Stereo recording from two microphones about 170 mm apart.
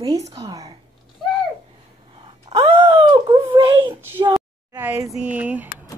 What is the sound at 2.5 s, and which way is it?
Groan, 35° right (ahead or behind).